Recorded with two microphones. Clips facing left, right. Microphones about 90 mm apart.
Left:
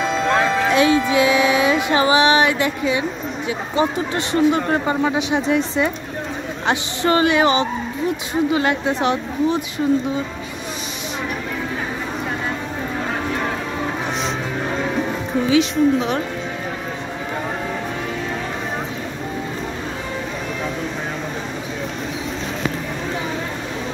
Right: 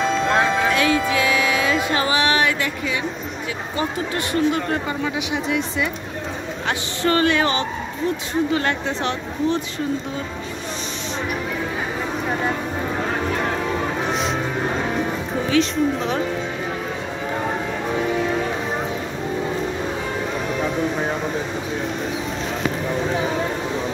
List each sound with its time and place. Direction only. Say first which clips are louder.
0.7 s music: left 3 dB; 20° left (ahead or behind)
4.3 s speech: left 4 dB; 25° left (ahead or behind)
6.7 s speech: left 3 dB; 20° left (ahead or behind)
15.5 s a woman's voice: left 3 dB; 5° left (ahead or behind)